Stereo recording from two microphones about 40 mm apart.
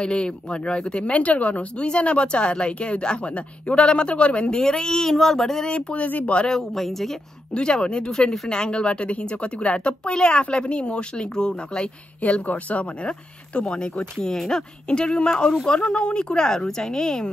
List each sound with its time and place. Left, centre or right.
0.0 s speech: left
4.5 s speech: centre
5.7 s speech: left
6.0 s speech: left
6.5 s speech: centre
7.5 s speech: left
12.2 s speech: left
13.6 s speech: left
14.1 s speech: centre
15.0 s speech: left